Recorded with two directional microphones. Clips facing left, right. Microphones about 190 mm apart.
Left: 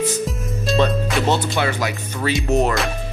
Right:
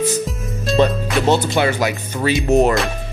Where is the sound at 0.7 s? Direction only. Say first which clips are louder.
Right 3 dB; centre (ahead or behind).